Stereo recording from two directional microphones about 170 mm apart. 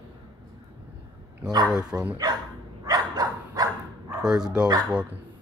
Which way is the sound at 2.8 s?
25° right (ahead or behind).